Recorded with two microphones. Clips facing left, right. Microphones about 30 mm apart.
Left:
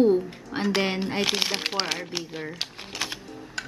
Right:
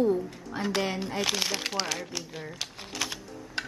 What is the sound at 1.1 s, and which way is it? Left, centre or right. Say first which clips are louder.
Speech: left 2 dB; left.